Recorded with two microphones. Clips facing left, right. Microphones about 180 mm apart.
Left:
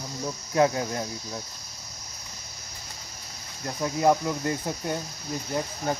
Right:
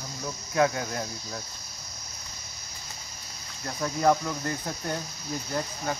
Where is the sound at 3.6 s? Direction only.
15° left (ahead or behind).